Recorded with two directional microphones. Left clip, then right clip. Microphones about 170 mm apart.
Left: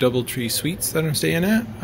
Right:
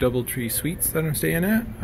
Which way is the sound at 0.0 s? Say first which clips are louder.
Left 3 dB; centre (ahead or behind).